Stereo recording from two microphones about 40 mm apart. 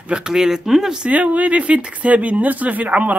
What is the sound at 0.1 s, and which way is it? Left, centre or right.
Speech, centre.